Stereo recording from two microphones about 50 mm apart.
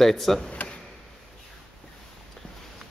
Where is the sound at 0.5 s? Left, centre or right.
Left.